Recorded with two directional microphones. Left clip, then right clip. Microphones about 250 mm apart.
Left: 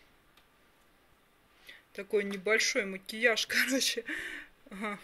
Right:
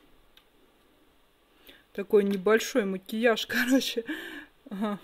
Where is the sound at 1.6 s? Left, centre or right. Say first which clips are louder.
Right 8 dB; right.